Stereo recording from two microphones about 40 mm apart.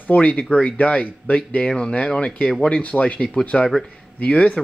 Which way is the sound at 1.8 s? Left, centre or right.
Left.